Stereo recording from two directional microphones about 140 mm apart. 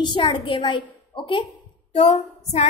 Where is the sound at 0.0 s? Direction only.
35° left (ahead or behind).